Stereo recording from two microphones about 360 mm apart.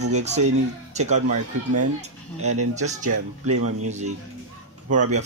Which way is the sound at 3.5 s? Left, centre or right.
Right.